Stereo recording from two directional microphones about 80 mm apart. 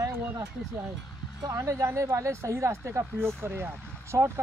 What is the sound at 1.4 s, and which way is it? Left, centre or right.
Speech, right.